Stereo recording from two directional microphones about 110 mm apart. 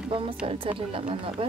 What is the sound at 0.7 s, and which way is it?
Speech, 65° right (ahead or behind).